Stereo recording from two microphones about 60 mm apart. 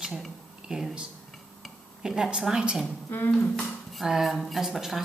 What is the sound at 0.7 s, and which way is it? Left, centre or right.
Speech, centre.